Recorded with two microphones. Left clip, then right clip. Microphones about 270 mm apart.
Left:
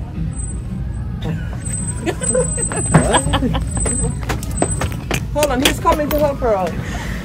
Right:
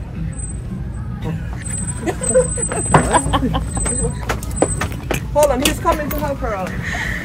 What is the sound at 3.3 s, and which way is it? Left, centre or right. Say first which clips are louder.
Speech: right 1 dB; right.